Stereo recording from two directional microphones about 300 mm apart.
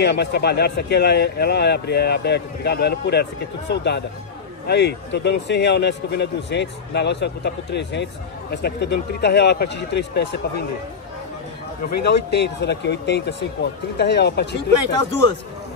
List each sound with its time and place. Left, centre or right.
0.0 s a man's voice: left
12.0 s a man's voice: left